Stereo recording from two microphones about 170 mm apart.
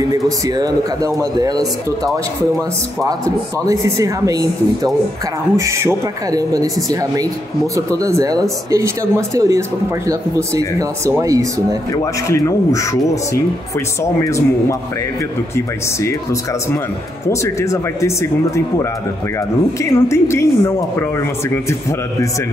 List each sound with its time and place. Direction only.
0.1 s a woman's voice: 20° right (ahead or behind)
3.6 s a woman's voice: 20° right (ahead or behind)
11.9 s a woman's voice: 20° left (ahead or behind)
19.8 s a woman's voice: 15° left (ahead or behind)